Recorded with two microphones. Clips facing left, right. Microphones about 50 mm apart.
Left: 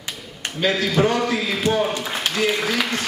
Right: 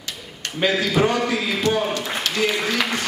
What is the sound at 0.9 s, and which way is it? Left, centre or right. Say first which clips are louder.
Speech: even; centre.